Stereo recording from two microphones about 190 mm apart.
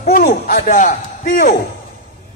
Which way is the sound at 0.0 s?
45° left (ahead or behind).